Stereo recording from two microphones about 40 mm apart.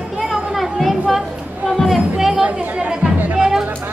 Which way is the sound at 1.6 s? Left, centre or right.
Centre.